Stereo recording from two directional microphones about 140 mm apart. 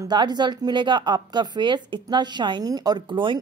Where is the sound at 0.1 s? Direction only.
30° right (ahead or behind).